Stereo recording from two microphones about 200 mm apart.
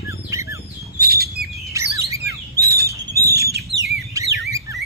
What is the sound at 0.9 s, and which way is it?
Bird, 50° right (ahead or behind).